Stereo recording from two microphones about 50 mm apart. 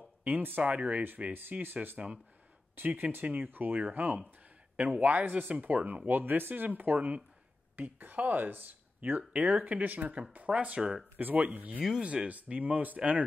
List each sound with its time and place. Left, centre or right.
0.4 s speech: right
6.0 s speech: right
10.8 s speech: centre
11.1 s speech: right